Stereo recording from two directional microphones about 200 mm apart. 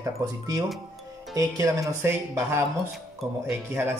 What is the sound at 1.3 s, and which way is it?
Speech, 15° right (ahead or behind).